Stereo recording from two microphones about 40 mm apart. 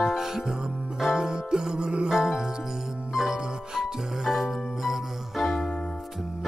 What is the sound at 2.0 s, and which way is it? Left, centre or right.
Music, centre.